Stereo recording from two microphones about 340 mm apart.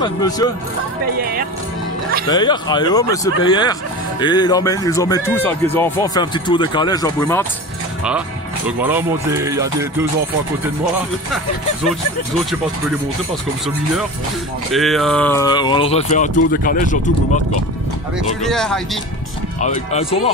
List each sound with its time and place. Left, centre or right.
0.0 s speech: centre
1.1 s speech: right
2.2 s speech: centre
8.6 s speech: centre
14.7 s speech: centre; by 17.4 s left
18.4 s speech: centre
19.6 s speech: centre